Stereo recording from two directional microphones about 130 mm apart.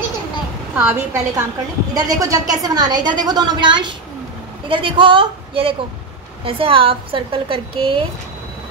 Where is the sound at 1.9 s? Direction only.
25° right (ahead or behind); by 7.9 s 45° right (ahead or behind).